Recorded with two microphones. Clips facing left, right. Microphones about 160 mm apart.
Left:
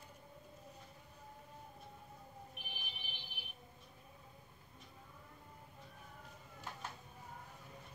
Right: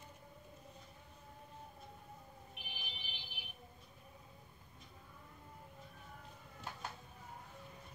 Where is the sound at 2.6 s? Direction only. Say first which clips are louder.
Even; 50° left (ahead or behind).